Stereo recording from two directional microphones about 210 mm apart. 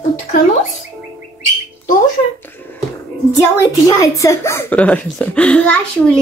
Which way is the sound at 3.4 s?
15° left (ahead or behind).